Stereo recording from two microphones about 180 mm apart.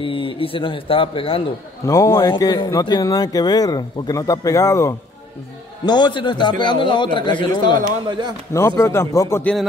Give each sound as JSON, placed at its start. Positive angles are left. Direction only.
{"t": 0.0, "sound": "speech", "side_deg": 30}
{"t": 1.9, "sound": "speech", "side_deg": 15}